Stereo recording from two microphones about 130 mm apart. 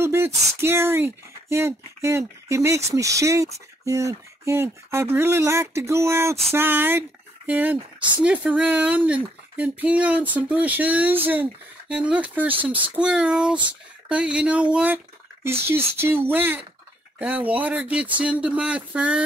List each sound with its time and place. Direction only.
0.0 s speech: 20° right (ahead or behind)